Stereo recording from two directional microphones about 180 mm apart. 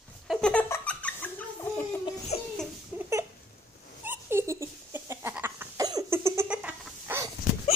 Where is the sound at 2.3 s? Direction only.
35° left (ahead or behind).